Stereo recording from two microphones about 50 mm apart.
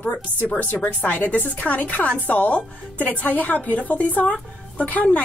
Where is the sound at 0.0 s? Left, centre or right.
Left.